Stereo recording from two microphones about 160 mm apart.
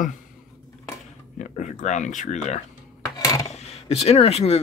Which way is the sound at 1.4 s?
50° left (ahead or behind).